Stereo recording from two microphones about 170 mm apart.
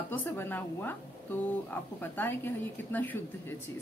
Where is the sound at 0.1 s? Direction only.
10° left (ahead or behind).